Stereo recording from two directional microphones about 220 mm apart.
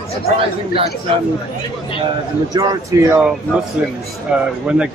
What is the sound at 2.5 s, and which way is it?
Speech, 20° right (ahead or behind).